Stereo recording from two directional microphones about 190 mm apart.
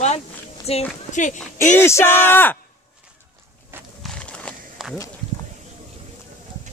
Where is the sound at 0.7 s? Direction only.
30° left (ahead or behind).